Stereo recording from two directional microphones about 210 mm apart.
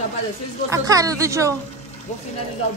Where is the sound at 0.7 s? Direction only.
15° right (ahead or behind).